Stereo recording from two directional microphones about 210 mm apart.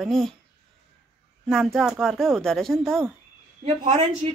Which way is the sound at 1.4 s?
Centre (ahead or behind).